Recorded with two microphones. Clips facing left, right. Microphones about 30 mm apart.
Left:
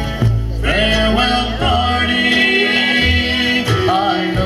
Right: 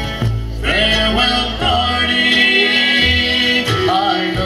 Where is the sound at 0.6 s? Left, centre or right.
Centre.